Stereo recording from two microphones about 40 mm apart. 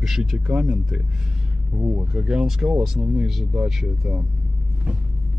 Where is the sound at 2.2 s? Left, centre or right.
Centre.